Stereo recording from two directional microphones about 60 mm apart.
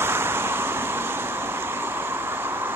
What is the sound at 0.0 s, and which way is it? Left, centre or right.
Vehicle, right.